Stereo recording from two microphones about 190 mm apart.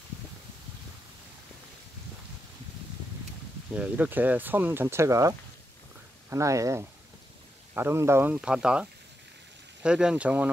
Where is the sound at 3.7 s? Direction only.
10° right (ahead or behind).